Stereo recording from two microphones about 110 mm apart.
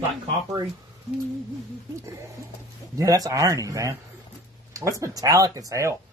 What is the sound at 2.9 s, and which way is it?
Speech, 30° right (ahead or behind).